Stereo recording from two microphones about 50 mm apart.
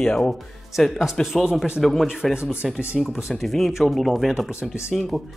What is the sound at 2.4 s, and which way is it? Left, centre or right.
Speech, right.